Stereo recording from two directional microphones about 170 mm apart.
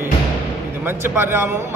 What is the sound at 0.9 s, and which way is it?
Speech, 15° right (ahead or behind).